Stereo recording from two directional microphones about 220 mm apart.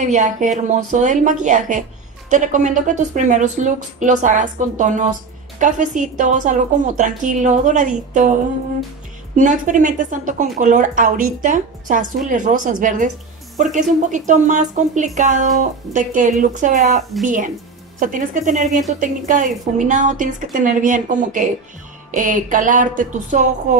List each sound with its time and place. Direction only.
0.0 s a woman's voice: 35° right (ahead or behind)